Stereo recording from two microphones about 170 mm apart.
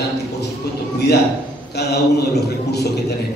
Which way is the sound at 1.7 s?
75° left (ahead or behind).